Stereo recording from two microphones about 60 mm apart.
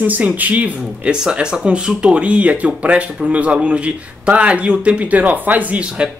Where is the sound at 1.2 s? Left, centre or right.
Centre.